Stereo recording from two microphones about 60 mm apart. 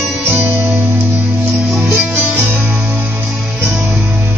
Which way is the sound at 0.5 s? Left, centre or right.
Right.